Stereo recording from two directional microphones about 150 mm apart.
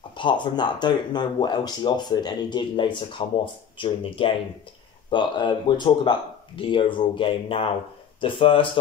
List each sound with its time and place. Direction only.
0.2 s speech: 30° left (ahead or behind)